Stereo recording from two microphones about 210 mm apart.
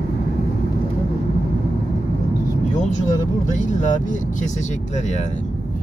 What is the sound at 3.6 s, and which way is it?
Speech, 35° left (ahead or behind).